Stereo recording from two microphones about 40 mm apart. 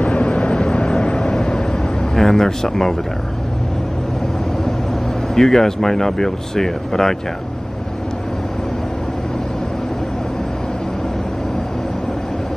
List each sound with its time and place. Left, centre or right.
0.0 s vehicle: left
2.1 s speech: centre
5.3 s speech: centre